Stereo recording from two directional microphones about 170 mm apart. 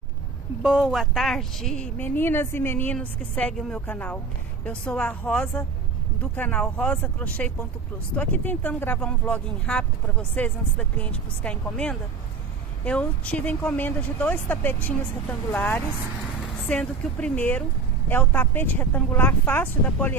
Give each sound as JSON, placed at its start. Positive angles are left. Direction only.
{"t": 0.6, "sound": "speech", "side_deg": -5}